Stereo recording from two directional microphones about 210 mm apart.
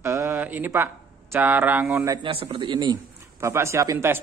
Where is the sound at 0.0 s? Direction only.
15° right (ahead or behind).